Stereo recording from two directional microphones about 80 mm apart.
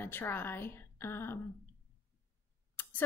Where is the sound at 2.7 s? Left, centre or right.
Left.